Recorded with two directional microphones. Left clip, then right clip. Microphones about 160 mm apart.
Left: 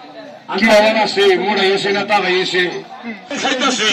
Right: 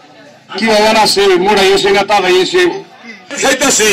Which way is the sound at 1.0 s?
30° right (ahead or behind).